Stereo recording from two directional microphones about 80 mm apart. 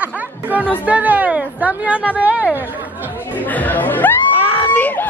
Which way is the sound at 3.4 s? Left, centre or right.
Left.